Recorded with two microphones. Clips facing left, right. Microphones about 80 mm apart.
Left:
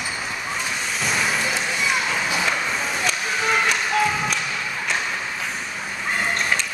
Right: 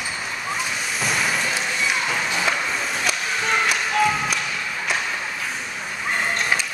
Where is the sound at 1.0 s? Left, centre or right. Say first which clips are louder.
Even; centre.